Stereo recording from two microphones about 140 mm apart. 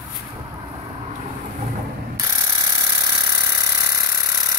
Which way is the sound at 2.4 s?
25° right (ahead or behind).